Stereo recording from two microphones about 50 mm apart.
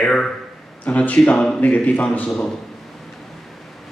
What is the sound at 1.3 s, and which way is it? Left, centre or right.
Speech, centre.